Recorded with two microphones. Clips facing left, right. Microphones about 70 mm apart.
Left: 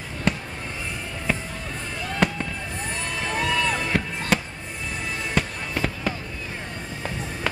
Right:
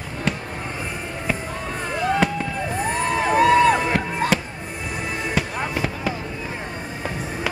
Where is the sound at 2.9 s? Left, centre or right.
Right.